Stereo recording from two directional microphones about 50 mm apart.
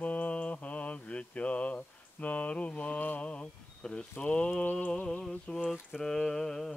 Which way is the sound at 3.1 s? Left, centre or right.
Left.